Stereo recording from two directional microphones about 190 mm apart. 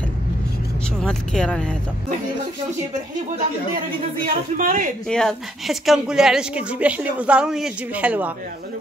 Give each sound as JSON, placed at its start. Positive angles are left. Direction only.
{"t": 1.0, "sound": "a woman's voice", "side_deg": 5}
{"t": 4.3, "sound": "speech", "side_deg": -45}
{"t": 5.0, "sound": "a woman's voice", "side_deg": 5}